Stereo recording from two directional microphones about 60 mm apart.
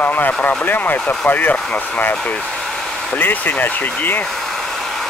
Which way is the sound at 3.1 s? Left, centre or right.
Left.